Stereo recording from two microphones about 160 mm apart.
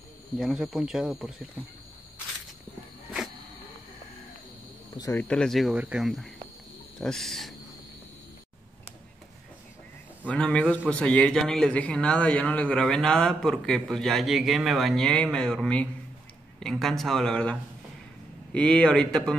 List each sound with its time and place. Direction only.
0.4 s a man's voice: centre (ahead or behind)
5.1 s a man's voice: 5° left (ahead or behind)
10.2 s a man's voice: 5° left (ahead or behind)